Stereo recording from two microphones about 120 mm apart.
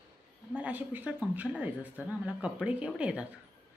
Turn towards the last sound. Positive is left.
turn(degrees=-10)  # may be behind; listen again after turning